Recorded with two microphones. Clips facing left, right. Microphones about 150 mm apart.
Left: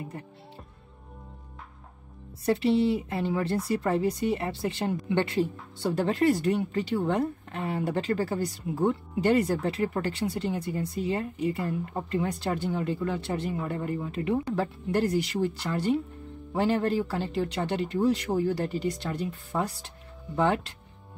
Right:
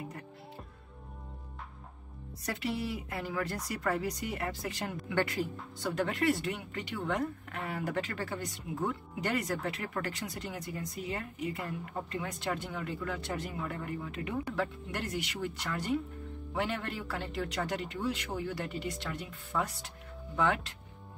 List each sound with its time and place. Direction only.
2.4 s speech: 30° left (ahead or behind)